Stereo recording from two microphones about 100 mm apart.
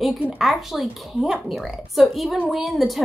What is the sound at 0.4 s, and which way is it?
A woman's voice, centre (ahead or behind).